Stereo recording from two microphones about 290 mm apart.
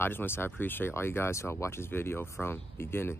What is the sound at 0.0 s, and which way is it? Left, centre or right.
Speech, centre.